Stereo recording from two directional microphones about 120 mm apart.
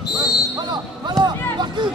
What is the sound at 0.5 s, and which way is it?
Basketball bounce, 35° right (ahead or behind).